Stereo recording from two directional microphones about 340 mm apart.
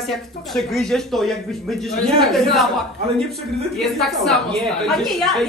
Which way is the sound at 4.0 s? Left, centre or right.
Centre.